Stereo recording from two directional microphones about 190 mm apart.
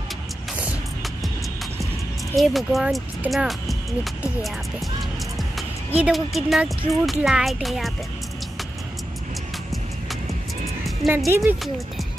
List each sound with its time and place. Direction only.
2.3 s speech: centre (ahead or behind)
5.6 s speech: 5° right (ahead or behind)
11.1 s speech: 15° right (ahead or behind)